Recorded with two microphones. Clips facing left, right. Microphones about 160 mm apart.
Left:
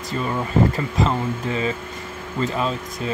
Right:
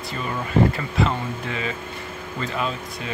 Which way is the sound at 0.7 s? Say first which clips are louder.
Left 2 dB; 35° left (ahead or behind).